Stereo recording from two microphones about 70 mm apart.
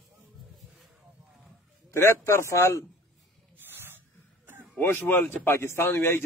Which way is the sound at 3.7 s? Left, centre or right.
Right.